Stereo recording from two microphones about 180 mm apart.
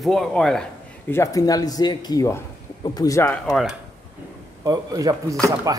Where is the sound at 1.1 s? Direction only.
15° left (ahead or behind).